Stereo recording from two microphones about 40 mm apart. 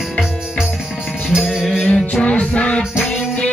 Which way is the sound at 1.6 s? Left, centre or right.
Centre.